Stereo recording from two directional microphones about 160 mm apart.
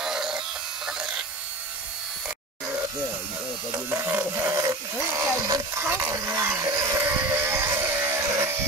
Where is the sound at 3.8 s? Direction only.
15° right (ahead or behind).